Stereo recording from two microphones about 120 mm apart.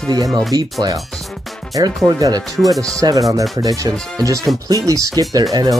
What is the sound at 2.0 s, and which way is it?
Speech, 30° right (ahead or behind).